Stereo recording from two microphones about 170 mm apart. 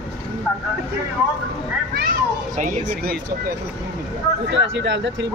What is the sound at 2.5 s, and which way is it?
Speech, 50° right (ahead or behind).